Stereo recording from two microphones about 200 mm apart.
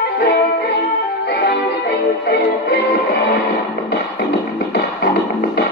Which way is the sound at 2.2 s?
60° left (ahead or behind).